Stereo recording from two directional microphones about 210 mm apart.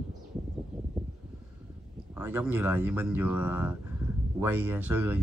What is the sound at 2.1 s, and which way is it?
Speech, 10° right (ahead or behind).